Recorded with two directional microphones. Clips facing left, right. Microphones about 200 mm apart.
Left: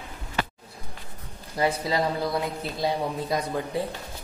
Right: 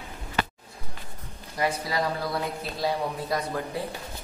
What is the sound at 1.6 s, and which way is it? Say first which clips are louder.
Speech: left 3 dB; 25° left (ahead or behind).